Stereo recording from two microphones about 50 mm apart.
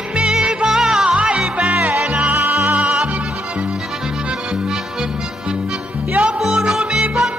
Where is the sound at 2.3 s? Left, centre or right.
Right.